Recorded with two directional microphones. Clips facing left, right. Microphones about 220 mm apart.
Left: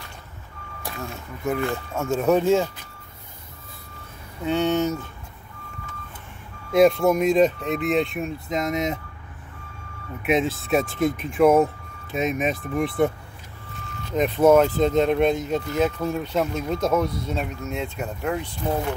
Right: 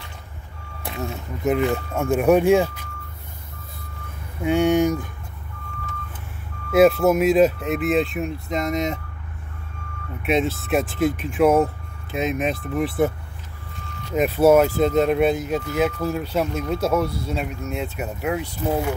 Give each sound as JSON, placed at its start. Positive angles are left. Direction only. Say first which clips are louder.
{"t": 0.8, "sound": "speech", "louder": "right 4 dB", "side_deg": -20}
{"t": 4.4, "sound": "speech", "louder": "right 4 dB", "side_deg": -10}
{"t": 6.7, "sound": "speech", "louder": "right 2 dB", "side_deg": -5}
{"t": 10.2, "sound": "speech", "louder": "right 1 dB", "side_deg": 0}
{"t": 14.1, "sound": "speech", "louder": "right 1 dB", "side_deg": -10}